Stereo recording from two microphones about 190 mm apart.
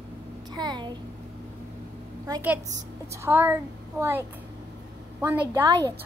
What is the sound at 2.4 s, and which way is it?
A woman's voice, 10° right (ahead or behind).